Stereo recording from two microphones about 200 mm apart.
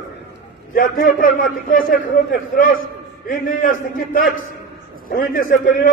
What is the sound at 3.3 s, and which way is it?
A man's voice, 45° left (ahead or behind).